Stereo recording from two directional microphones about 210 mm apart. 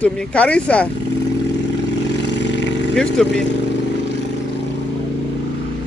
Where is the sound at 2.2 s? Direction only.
55° left (ahead or behind).